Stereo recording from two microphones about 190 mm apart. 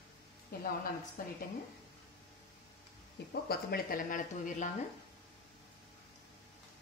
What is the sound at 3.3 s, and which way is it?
Speech, 55° left (ahead or behind).